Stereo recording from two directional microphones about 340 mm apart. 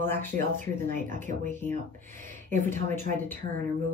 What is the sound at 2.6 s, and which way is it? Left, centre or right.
Speech, centre.